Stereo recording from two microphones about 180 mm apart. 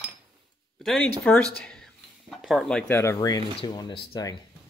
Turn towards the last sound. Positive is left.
turn(degrees=20)  # may be behind; listen again after turning